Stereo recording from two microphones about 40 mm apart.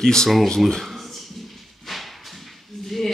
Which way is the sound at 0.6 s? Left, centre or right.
Centre.